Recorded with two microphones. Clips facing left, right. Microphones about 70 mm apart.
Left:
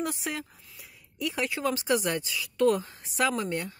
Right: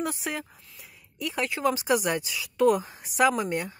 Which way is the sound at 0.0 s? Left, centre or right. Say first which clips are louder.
Right 1 dB; centre.